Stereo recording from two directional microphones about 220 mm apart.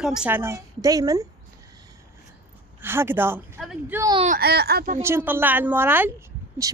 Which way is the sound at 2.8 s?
10° right (ahead or behind).